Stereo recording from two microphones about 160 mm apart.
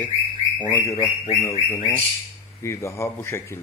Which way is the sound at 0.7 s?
15° left (ahead or behind).